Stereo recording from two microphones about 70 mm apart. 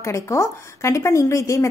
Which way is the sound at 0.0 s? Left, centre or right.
Left.